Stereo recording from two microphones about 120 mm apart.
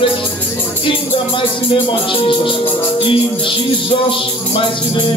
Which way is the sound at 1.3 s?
45° left (ahead or behind).